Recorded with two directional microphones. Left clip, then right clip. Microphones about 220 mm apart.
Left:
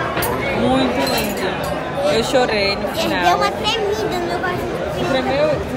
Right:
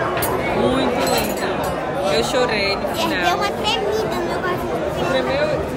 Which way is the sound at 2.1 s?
Centre (ahead or behind).